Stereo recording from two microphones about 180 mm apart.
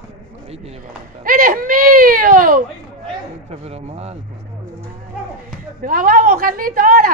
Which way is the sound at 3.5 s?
35° right (ahead or behind).